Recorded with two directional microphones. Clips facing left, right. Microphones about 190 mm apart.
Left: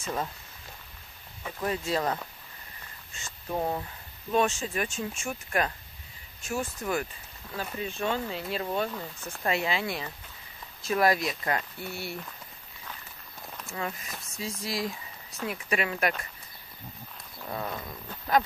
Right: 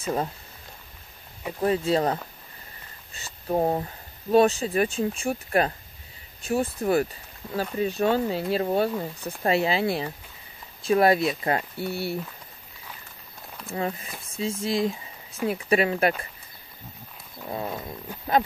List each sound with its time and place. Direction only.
1.6 s speech: 30° right (ahead or behind)
11.8 s speech: centre (ahead or behind)
13.7 s speech: 30° right (ahead or behind)
17.5 s dog: 20° right (ahead or behind)